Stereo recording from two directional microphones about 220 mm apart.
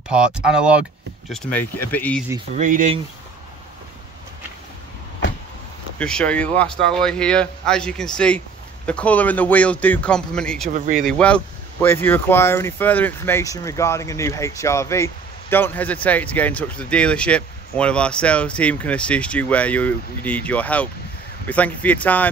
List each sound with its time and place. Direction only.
0.1 s speech: 5° right (ahead or behind)
1.3 s speech: 10° left (ahead or behind)
2.5 s speech: 35° right (ahead or behind)
5.9 s speech: 5° left (ahead or behind)